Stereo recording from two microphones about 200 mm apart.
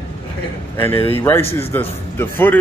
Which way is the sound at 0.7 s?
10° left (ahead or behind).